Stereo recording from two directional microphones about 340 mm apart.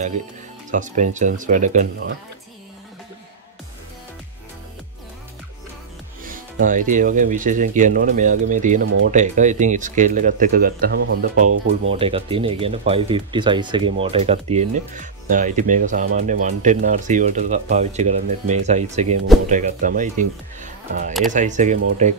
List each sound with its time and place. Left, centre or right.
0.7 s speech: right
6.2 s music: right
6.9 s speech: right
11.9 s speech: centre